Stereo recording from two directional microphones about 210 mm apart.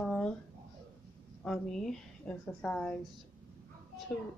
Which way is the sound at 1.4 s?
Centre (ahead or behind).